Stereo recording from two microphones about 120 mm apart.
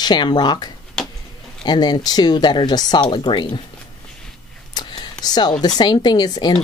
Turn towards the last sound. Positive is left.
turn(degrees=35)  # may be behind; listen again after turning